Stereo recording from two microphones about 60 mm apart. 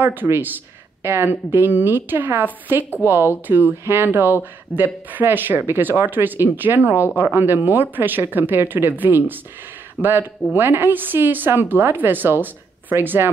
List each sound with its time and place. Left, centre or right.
0.0 s a woman's voice: right